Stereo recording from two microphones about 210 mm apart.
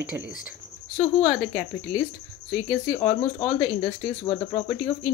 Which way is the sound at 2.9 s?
20° left (ahead or behind).